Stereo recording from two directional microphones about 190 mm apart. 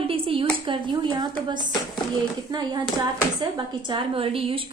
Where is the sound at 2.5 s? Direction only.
20° right (ahead or behind).